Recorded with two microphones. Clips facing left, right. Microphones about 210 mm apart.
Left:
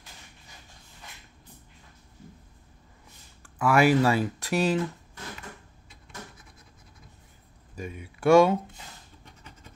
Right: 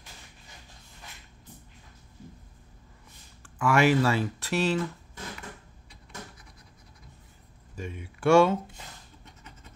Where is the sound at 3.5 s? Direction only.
10° left (ahead or behind).